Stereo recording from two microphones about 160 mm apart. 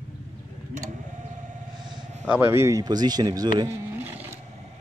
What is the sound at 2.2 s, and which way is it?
Speech, 10° right (ahead or behind).